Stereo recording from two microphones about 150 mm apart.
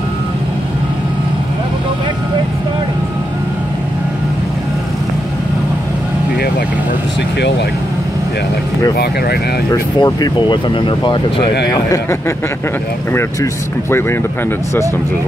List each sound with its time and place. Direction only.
9.7 s speech: 25° left (ahead or behind)
11.7 s a man's voice: 25° left (ahead or behind)